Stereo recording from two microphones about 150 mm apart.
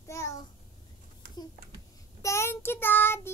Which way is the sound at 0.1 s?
20° left (ahead or behind).